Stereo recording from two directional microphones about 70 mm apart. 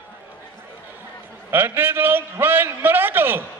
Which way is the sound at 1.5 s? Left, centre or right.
Right.